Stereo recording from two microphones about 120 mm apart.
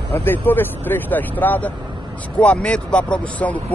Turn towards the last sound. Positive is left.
turn(degrees=10)  # may be behind; listen again after turning